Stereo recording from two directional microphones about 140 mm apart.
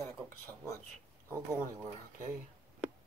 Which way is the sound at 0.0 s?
20° left (ahead or behind).